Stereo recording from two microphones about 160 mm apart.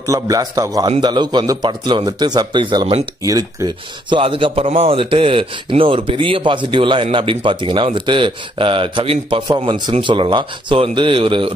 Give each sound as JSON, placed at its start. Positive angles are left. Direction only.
{"t": 0.0, "sound": "speech", "side_deg": -20}